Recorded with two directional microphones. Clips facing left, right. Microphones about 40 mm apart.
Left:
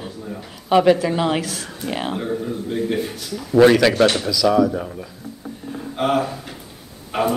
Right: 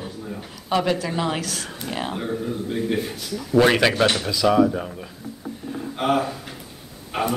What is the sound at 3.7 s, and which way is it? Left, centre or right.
Speech, centre.